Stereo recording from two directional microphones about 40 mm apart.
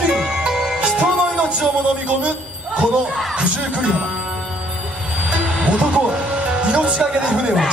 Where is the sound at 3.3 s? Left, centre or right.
Right.